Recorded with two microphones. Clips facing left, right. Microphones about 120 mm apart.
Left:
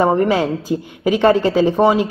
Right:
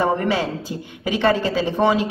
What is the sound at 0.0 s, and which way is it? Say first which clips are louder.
Speech: left 5 dB; 40° left (ahead or behind).